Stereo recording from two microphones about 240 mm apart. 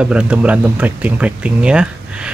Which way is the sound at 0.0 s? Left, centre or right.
Centre.